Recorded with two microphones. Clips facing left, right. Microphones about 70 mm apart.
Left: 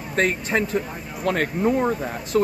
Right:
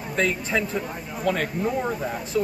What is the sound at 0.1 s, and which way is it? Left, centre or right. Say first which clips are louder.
Speech: left 2 dB; left.